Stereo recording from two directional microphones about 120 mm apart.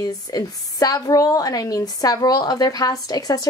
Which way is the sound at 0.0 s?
30° left (ahead or behind).